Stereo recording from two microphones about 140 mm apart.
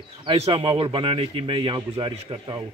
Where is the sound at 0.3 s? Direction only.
40° right (ahead or behind).